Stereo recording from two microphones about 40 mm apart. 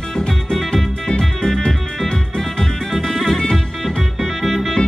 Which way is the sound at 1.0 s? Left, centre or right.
Centre.